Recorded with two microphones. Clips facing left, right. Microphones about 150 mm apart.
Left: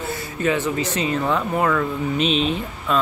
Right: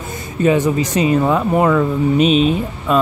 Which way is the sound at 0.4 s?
15° right (ahead or behind).